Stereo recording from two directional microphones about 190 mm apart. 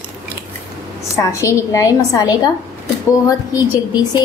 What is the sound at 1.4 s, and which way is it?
Speech, 15° left (ahead or behind).